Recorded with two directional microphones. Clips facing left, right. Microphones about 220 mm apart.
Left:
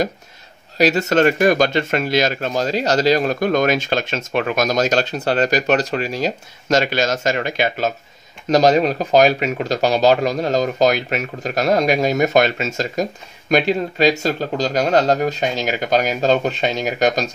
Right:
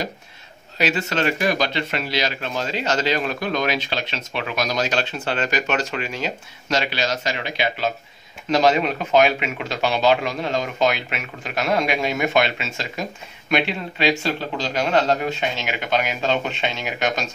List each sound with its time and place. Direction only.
0.7 s speech: 40° left (ahead or behind)